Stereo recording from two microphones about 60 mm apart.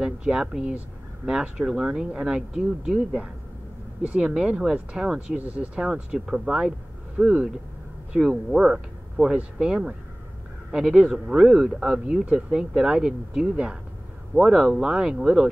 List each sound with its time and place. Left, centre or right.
0.0 s speech: centre
8.2 s speech: centre
8.5 s speech: centre